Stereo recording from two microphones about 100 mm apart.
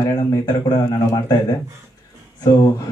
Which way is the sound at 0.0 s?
40° left (ahead or behind).